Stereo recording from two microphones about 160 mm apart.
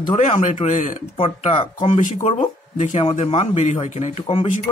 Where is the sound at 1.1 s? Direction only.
35° left (ahead or behind).